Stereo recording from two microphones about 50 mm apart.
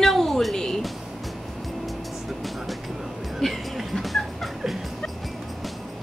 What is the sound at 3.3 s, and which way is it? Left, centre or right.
Music, centre.